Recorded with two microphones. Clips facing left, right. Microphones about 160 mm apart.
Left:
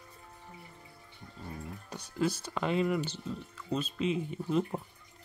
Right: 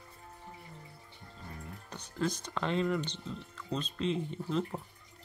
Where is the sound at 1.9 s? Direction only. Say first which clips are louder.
Left 3 dB; 10° left (ahead or behind).